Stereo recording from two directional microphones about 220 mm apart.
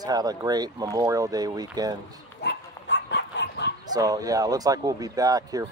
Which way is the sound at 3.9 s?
15° right (ahead or behind).